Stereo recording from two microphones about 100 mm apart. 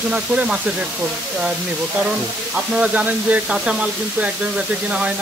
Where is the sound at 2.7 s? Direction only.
15° right (ahead or behind).